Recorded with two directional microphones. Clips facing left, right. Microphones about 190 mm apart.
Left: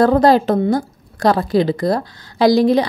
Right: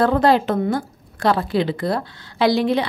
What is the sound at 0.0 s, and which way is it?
A woman's voice, 40° left (ahead or behind).